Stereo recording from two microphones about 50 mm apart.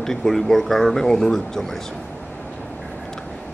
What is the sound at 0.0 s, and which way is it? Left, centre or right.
A man's voice, centre.